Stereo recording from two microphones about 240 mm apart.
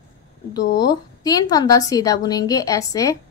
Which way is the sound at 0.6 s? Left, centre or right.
Left.